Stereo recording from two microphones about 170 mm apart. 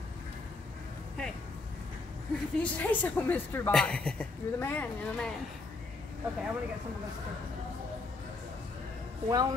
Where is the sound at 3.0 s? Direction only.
10° left (ahead or behind).